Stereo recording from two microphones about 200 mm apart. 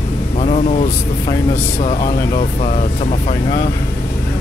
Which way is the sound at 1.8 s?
30° left (ahead or behind).